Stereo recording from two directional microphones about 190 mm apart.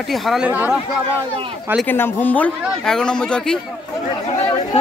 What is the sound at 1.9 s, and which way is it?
Speech, 10° left (ahead or behind).